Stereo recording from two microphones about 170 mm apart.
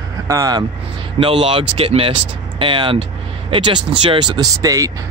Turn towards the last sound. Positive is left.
turn(degrees=-20)  # may be behind; listen again after turning